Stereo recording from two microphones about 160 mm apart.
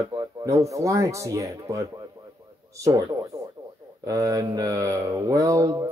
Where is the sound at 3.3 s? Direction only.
20° right (ahead or behind).